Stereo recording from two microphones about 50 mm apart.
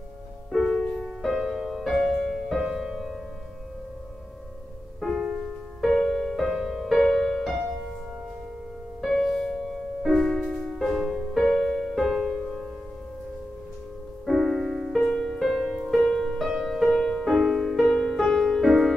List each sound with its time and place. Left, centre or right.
0.6 s music: centre
1.9 s music: centre
5.2 s music: right
5.8 s music: centre
9.0 s music: centre
14.2 s music: centre